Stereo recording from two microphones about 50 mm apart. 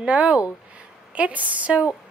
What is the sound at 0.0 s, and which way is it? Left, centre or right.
A woman's voice, right.